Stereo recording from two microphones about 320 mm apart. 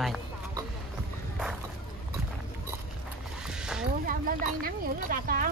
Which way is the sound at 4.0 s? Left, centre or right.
Right.